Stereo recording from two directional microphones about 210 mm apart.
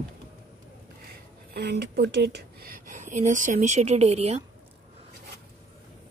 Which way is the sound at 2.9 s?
35° right (ahead or behind).